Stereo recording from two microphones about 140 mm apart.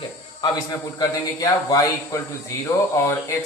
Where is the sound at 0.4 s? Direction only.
25° left (ahead or behind).